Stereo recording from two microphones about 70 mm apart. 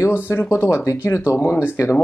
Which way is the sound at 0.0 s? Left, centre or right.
Left.